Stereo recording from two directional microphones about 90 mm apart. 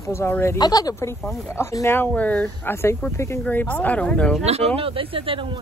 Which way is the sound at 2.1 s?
15° left (ahead or behind).